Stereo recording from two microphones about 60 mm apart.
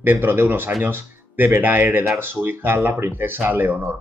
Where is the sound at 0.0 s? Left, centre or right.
Right.